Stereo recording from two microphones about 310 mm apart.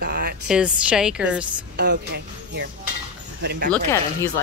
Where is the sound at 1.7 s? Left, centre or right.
Right.